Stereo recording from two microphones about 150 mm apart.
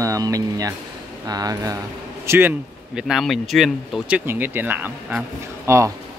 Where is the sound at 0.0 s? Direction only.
20° right (ahead or behind).